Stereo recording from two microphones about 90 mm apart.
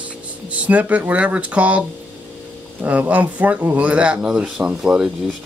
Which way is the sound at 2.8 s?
20° right (ahead or behind).